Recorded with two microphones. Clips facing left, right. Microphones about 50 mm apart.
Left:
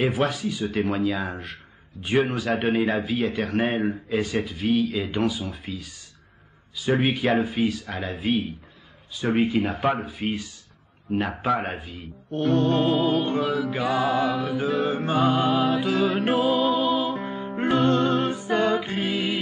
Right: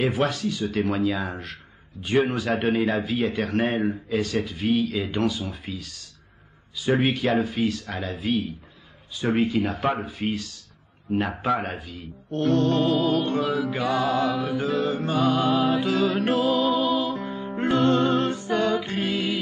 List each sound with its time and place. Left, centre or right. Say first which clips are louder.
0.0 s speech: even; centre
4.5 s speech: even; centre
6.9 s speech: even; centre
7.2 s speech: left 1 dB; centre
8.3 s music: left 1 dB; left
9.3 s speech: left 1 dB; centre
10.3 s music: even; centre
11.1 s speech: even; centre
14.8 s music: left 2 dB; left